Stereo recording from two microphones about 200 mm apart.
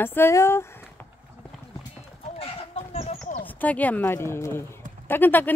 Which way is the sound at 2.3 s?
30° left (ahead or behind).